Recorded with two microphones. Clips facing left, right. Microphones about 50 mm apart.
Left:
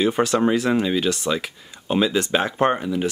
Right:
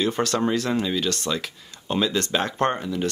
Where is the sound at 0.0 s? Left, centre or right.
Centre.